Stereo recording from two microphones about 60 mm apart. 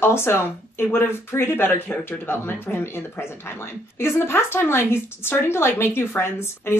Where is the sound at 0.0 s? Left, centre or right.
Left.